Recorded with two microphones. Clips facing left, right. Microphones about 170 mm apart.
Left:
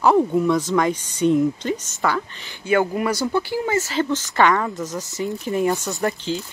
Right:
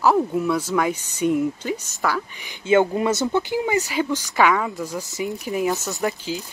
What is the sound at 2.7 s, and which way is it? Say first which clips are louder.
Speech: right 2 dB; 25° right (ahead or behind).